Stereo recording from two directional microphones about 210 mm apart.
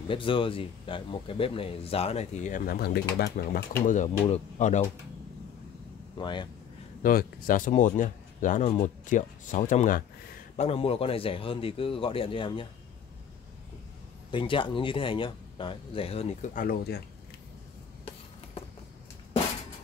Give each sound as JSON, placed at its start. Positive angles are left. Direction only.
{"t": 0.1, "sound": "a man's voice", "side_deg": 25}
{"t": 3.8, "sound": "speech", "side_deg": 35}
{"t": 6.1, "sound": "a man's voice", "side_deg": 20}
{"t": 7.0, "sound": "a man's voice", "side_deg": 40}
{"t": 14.3, "sound": "a man's voice", "side_deg": 25}
{"t": 16.6, "sound": "speech", "side_deg": 50}